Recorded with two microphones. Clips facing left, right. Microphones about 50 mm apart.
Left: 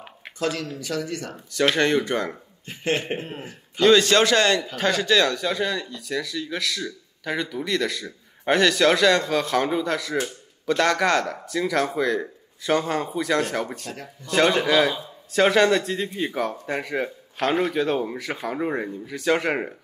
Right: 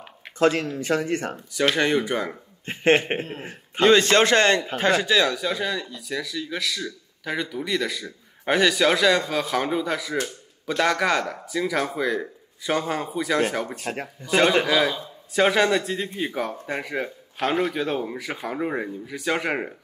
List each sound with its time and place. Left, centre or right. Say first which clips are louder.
0.4 s a man's voice: right 6 dB; right
2.0 s a man's voice: left 1 dB; centre
2.6 s a man's voice: right 6 dB; right
5.0 s speech: left 1 dB; centre
13.9 s speech: right 6 dB; right
14.2 s a man's voice: right 1 dB; centre
14.7 s speech: left 2 dB; centre